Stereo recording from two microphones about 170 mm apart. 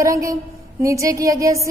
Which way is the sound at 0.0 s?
20° right (ahead or behind).